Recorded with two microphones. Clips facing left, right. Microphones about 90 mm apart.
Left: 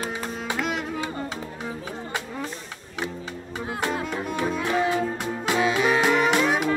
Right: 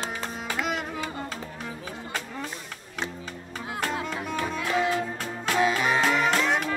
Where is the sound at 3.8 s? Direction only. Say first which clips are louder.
Left 2 dB; 15° left (ahead or behind).